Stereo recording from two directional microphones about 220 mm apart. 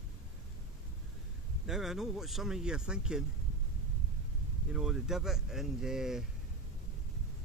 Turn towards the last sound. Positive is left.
turn(degrees=0)  # may be behind; listen again after turning